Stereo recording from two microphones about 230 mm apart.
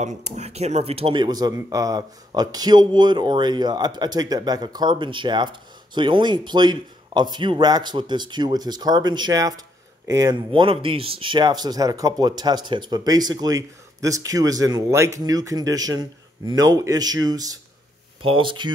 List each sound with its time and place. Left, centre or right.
0.0 s speech: right